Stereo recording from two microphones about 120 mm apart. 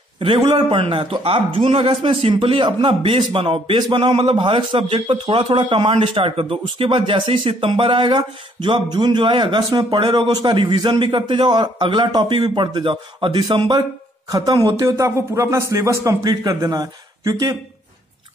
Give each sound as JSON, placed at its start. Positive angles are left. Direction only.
{"t": 0.2, "sound": "a man's voice", "side_deg": -40}